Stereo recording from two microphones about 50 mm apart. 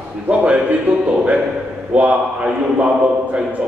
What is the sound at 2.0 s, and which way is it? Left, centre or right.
Speech, right.